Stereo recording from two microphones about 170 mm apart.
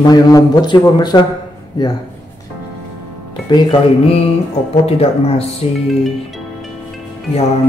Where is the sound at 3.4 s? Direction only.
30° left (ahead or behind).